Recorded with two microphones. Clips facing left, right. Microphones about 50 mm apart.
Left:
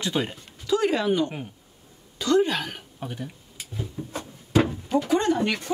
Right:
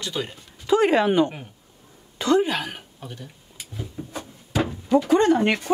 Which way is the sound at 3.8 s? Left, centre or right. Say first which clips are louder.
Left 1 dB; centre.